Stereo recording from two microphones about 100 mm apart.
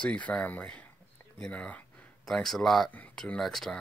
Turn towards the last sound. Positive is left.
turn(degrees=5)  # may be behind; listen again after turning